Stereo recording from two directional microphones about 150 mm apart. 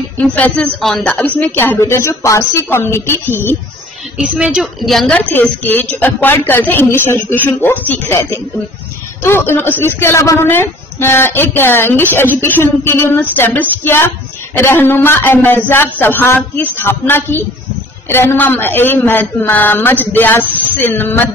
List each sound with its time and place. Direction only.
0.2 s a woman's voice: 10° left (ahead or behind)
4.2 s a woman's voice: 5° right (ahead or behind); by 8.0 s 15° left (ahead or behind)
9.2 s a woman's voice: 15° left (ahead or behind)